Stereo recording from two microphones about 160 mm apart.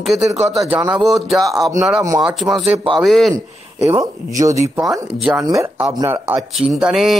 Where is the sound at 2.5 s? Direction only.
35° right (ahead or behind).